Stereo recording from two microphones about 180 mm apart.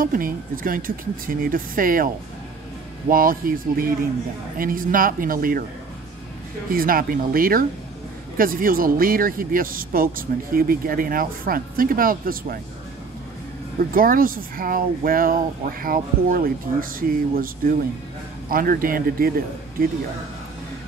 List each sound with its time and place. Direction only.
0.0 s speech: 50° right (ahead or behind)
3.1 s speech: 50° right (ahead or behind)
6.7 s speech: 55° right (ahead or behind)
13.9 s speech: 50° right (ahead or behind)